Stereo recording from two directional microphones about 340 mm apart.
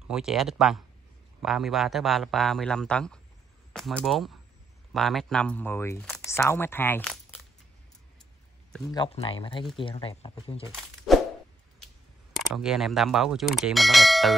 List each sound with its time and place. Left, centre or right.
0.1 s speech: centre
8.9 s speech: centre
10.7 s a sound: centre
12.4 s speech: centre